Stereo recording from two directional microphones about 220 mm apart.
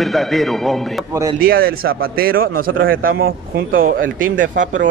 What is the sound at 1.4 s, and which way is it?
Speech, 40° right (ahead or behind).